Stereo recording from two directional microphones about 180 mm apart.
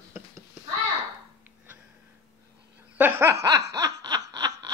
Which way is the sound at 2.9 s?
10° right (ahead or behind).